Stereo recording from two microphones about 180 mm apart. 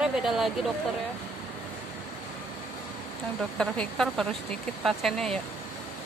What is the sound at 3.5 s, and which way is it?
Speech, 5° left (ahead or behind).